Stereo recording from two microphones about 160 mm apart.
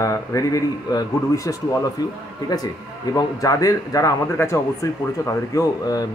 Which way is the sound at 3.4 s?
20° left (ahead or behind).